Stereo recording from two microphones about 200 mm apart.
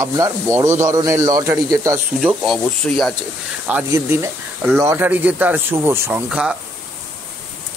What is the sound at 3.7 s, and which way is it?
Speech, 10° right (ahead or behind).